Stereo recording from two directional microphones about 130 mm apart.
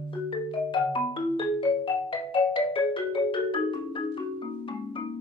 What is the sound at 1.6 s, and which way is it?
Marimba, 40° left (ahead or behind).